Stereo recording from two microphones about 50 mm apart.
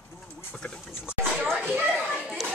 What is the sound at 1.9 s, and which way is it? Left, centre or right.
Children playing, centre.